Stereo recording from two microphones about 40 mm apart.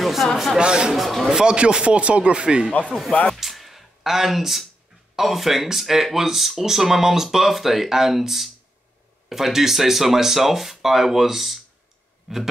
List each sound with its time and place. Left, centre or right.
0.0 s chatter: centre
0.6 s speech: right
0.9 s speech: centre
1.3 s speech: right
3.3 s a sound: centre
5.1 s speech: centre